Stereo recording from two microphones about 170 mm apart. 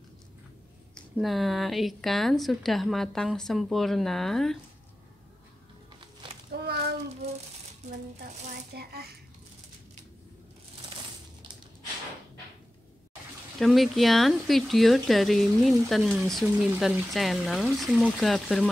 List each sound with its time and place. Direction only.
0.9 s speech: centre (ahead or behind)
6.5 s a sound: 70° right (ahead or behind)
8.7 s a child's voice: 65° right (ahead or behind)
13.6 s speech: centre (ahead or behind)